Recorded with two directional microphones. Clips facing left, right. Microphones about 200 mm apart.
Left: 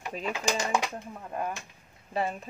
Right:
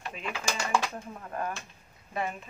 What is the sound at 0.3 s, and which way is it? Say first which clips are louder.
Speech: left 2 dB; 20° left (ahead or behind).